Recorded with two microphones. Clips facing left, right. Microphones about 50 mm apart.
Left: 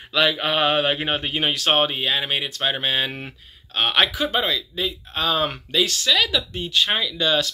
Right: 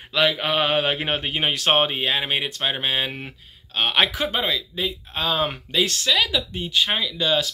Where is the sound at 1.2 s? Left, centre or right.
Right.